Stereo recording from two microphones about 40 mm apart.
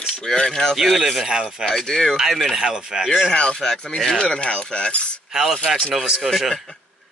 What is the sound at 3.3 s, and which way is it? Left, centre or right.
Speech, left.